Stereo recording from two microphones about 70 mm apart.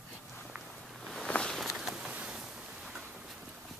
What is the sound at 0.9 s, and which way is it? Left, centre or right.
Walk, centre.